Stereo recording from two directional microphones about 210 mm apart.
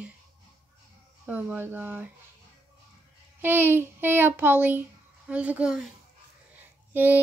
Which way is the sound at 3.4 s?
10° right (ahead or behind).